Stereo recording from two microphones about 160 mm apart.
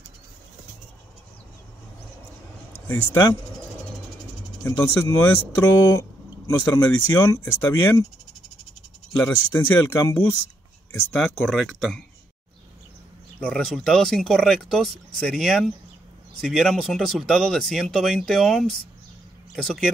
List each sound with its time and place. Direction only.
2.9 s speech: 15° left (ahead or behind)
4.6 s speech: 15° left (ahead or behind)
9.1 s speech: 10° left (ahead or behind)
13.4 s speech: 5° left (ahead or behind)